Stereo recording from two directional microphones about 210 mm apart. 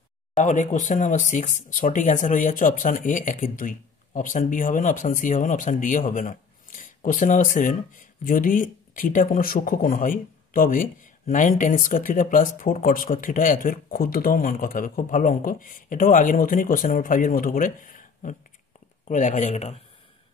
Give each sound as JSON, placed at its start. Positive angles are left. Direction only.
{"t": 0.4, "sound": "speech", "side_deg": 35}